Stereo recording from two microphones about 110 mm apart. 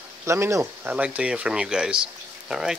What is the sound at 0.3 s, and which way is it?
Speech, 25° right (ahead or behind).